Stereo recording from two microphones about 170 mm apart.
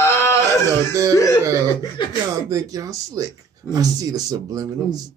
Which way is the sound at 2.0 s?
25° left (ahead or behind).